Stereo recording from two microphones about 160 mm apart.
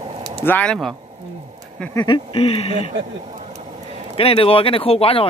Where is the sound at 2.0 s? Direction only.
35° left (ahead or behind).